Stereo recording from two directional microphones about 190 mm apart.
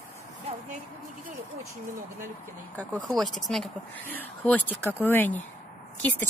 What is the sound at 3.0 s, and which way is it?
Speech, centre (ahead or behind).